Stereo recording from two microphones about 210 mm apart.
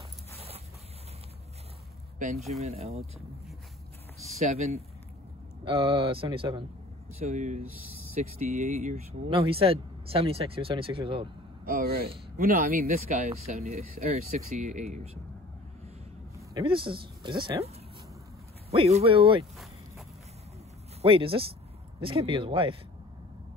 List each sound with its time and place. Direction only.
2.1 s speech: 40° right (ahead or behind)
4.4 s speech: 30° right (ahead or behind)
11.6 s speech: 45° right (ahead or behind)
13.7 s speech: 30° right (ahead or behind)
16.3 s speech: 20° right (ahead or behind)
18.7 s speech: 30° right (ahead or behind)
19.5 s walk: centre (ahead or behind)
21.0 s speech: 25° right (ahead or behind)